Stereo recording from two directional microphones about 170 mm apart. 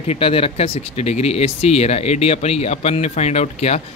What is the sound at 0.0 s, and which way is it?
Speech, 35° left (ahead or behind).